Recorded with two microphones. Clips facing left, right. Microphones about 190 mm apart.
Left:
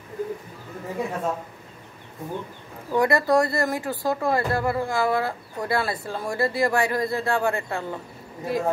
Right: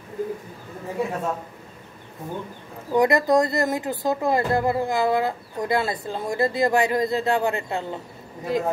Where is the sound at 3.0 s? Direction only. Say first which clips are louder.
Right 2 dB; 20° right (ahead or behind).